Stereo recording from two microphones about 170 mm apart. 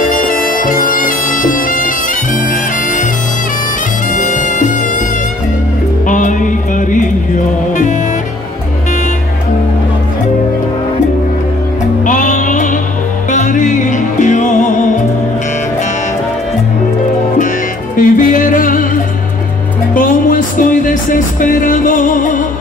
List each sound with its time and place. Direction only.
0.1 s music: 55° left (ahead or behind)
4.1 s music: 50° left (ahead or behind)
6.0 s music: 50° left (ahead or behind)
12.0 s music: 50° left (ahead or behind)
17.9 s music: 50° left (ahead or behind)
19.9 s music: 55° left (ahead or behind)